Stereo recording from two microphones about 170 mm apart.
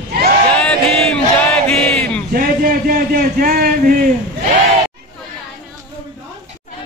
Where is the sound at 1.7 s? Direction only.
5° left (ahead or behind).